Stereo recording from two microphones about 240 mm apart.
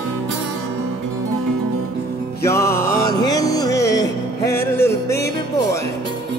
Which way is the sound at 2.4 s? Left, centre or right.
Centre.